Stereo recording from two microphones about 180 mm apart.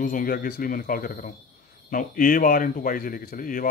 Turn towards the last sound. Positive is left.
turn(degrees=50)  # may be behind; listen again after turning